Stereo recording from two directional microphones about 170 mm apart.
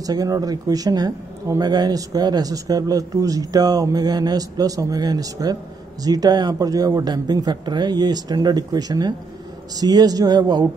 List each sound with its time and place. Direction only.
0.0 s speech: 20° right (ahead or behind)